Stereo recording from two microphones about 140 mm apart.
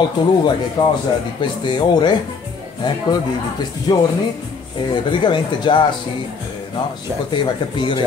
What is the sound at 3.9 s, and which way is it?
Speech, 25° left (ahead or behind).